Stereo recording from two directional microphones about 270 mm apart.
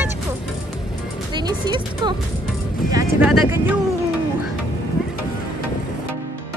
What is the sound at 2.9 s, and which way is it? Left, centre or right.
Speech, centre.